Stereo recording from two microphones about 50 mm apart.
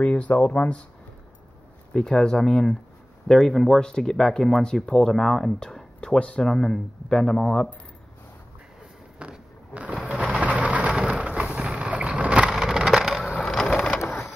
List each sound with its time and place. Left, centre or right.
0.0 s speech: left
2.0 s speech: centre
6.5 s speech: centre
9.2 s a sound: right
9.7 s sewing machine: right
10.0 s vehicle: right
12.6 s a sound: centre
13.4 s vehicle: centre